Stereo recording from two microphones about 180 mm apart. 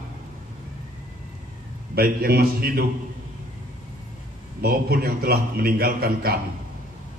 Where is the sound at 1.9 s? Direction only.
60° right (ahead or behind).